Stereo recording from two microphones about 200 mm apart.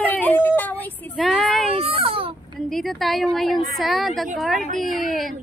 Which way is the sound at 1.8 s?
30° right (ahead or behind).